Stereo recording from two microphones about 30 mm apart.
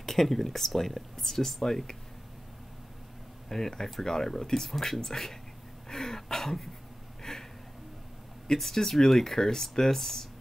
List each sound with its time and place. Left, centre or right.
0.0 s speech: centre
3.4 s speech: centre
5.9 s throat clearing: centre
7.3 s a sound: centre
8.7 s speech: centre